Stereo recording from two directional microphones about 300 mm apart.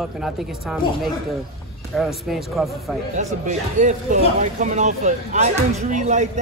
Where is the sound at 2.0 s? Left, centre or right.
Centre.